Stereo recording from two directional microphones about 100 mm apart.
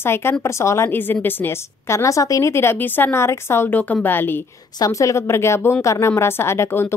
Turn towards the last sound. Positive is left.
turn(degrees=25)  # may be behind; listen again after turning